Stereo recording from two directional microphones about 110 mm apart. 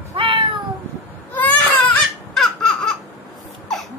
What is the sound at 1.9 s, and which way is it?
Baby laughter, centre (ahead or behind).